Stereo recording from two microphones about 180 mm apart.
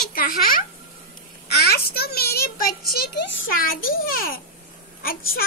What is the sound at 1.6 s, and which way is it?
A child's voice, 60° left (ahead or behind).